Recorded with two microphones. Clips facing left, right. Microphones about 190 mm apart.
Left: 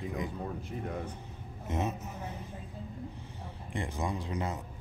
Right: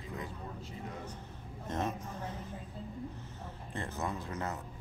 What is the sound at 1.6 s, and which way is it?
Speech, 10° left (ahead or behind).